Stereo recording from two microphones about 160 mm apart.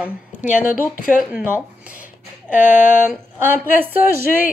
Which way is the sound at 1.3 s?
10° right (ahead or behind).